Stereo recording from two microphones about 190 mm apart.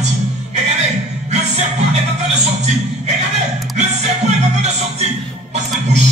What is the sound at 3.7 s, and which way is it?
Music, 35° right (ahead or behind).